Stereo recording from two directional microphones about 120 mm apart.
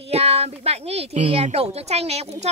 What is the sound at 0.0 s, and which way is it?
Speech, 60° right (ahead or behind).